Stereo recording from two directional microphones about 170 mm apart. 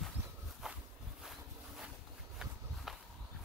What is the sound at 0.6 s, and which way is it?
Walk, centre (ahead or behind).